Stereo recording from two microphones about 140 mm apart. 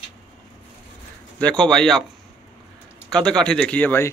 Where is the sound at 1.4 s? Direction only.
5° left (ahead or behind).